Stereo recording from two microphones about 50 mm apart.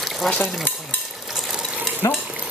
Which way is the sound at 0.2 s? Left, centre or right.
Centre.